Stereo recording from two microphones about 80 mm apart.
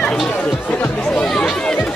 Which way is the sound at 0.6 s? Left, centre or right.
Left.